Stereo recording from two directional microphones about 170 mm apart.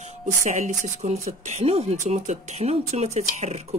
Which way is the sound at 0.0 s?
45° right (ahead or behind).